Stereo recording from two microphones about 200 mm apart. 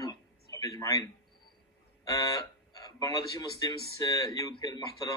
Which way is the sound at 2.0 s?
20° left (ahead or behind).